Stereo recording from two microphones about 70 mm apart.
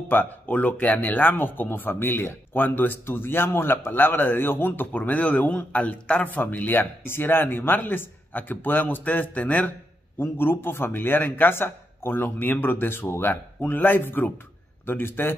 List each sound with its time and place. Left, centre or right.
0.1 s a man's voice: left